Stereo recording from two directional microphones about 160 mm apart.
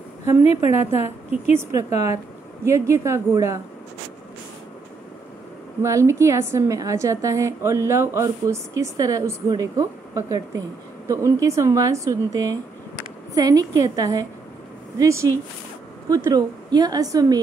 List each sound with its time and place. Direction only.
0.4 s a woman's voice: 45° left (ahead or behind)
1.6 s a woman's voice: 20° right (ahead or behind)
5.8 s a woman's voice: 20° right (ahead or behind)